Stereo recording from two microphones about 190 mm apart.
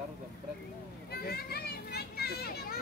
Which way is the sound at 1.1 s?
55° left (ahead or behind).